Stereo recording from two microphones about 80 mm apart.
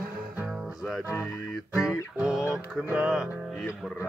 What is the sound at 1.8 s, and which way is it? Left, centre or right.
Music, centre.